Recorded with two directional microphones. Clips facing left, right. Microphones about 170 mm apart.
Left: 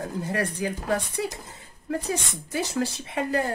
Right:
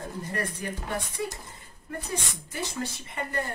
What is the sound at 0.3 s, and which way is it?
Speech, 85° left.